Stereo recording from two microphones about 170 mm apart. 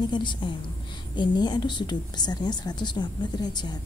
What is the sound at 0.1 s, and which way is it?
A woman's voice, 25° left (ahead or behind).